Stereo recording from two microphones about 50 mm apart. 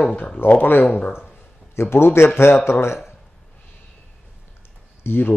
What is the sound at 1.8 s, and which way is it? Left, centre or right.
Speech, left.